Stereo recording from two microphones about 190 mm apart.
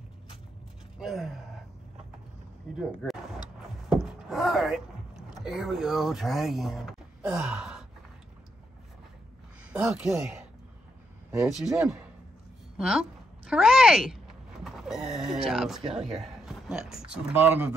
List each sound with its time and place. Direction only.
0.9 s gasp: centre (ahead or behind)
2.7 s speech: centre (ahead or behind)
3.9 s a sound: centre (ahead or behind)
7.3 s gasp: 5° right (ahead or behind)
9.7 s speech: 5° right (ahead or behind)
11.6 s a woman's voice: 5° right (ahead or behind)